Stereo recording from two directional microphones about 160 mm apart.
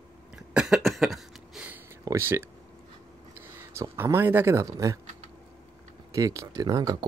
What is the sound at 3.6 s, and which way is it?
Speech, 15° right (ahead or behind).